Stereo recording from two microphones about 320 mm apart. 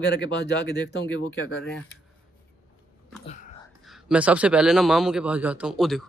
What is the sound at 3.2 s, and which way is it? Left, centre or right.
Whispering, left.